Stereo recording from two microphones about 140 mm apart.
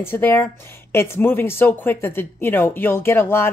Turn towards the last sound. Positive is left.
turn(degrees=15)  # may be behind; listen again after turning